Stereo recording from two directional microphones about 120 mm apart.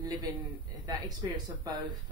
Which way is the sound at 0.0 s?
30° right (ahead or behind).